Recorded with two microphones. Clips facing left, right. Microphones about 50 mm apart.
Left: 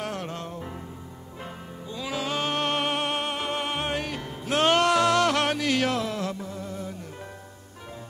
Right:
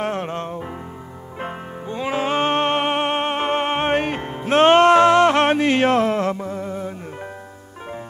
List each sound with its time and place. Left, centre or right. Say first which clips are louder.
0.0 s music: right 8 dB; right